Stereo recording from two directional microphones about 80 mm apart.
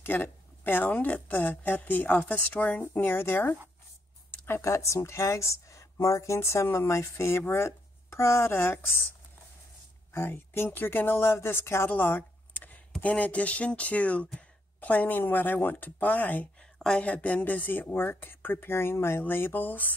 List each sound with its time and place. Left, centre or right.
0.0 s speech: left
10.1 s speech: left
16.7 s speech: centre